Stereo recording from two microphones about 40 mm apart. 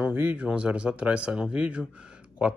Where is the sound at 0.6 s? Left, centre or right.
Right.